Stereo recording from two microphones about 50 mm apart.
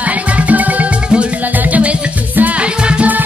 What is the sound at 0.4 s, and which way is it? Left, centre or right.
Music, right.